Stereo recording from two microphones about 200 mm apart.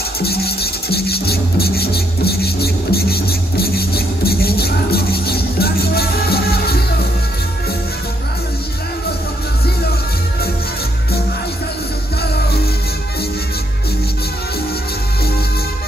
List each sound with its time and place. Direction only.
0.2 s music: 50° left (ahead or behind)